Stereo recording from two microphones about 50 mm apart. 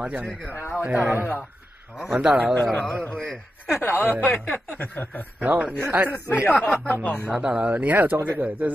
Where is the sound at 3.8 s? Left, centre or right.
Left.